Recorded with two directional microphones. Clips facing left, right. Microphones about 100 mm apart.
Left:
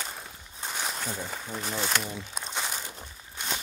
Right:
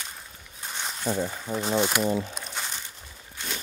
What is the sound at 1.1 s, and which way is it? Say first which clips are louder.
Speech: right 9 dB; 60° right (ahead or behind).